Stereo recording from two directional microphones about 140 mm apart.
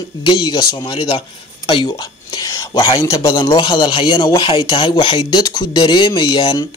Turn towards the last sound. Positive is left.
turn(degrees=35)  # may be behind; listen again after turning